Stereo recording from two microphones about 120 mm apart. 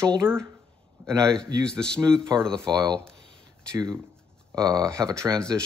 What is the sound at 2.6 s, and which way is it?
Speech, 35° right (ahead or behind).